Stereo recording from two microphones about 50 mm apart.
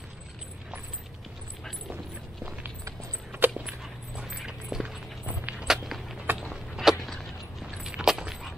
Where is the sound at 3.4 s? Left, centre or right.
Right.